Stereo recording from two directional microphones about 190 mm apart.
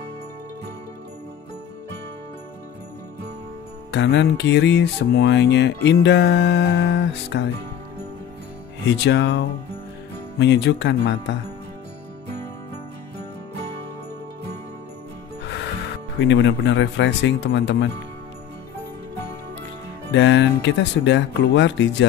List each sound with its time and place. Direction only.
3.9 s speech: 65° left (ahead or behind)
8.9 s speech: 65° left (ahead or behind)
10.4 s speech: 65° left (ahead or behind)
16.2 s speech: 75° left (ahead or behind)
20.1 s speech: 70° left (ahead or behind)